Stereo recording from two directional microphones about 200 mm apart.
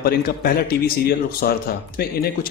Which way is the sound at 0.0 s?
50° left (ahead or behind).